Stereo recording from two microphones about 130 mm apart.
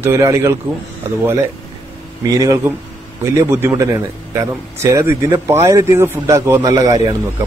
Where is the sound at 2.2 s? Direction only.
25° right (ahead or behind).